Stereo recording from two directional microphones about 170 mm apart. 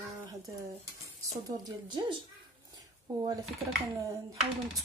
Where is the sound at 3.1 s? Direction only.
25° right (ahead or behind).